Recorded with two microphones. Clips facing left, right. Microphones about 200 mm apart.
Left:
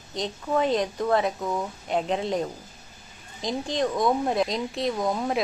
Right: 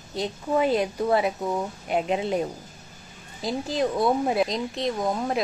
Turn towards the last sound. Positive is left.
turn(degrees=0)  # may be behind; listen again after turning